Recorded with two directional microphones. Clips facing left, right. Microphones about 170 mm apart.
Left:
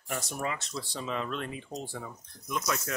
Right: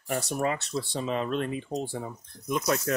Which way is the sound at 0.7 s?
30° right (ahead or behind).